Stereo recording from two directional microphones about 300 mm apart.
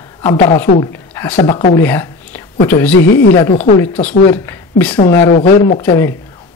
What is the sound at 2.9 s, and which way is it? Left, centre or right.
Speech, left.